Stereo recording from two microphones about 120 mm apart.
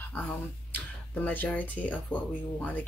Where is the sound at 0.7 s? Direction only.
15° left (ahead or behind).